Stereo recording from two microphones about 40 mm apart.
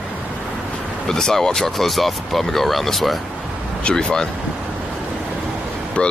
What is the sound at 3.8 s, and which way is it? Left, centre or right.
Speech, left.